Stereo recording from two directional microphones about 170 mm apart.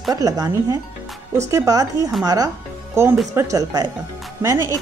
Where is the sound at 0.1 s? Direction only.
20° right (ahead or behind).